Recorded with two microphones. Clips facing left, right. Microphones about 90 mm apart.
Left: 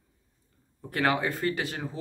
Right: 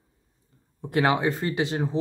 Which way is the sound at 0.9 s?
20° right (ahead or behind).